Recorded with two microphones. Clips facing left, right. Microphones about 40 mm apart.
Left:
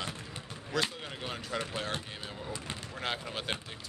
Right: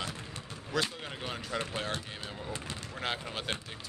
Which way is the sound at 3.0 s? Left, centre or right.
Centre.